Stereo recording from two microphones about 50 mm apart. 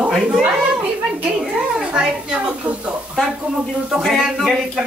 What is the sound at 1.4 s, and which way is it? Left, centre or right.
Speech, centre.